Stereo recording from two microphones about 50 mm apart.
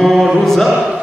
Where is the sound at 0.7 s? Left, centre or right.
Centre.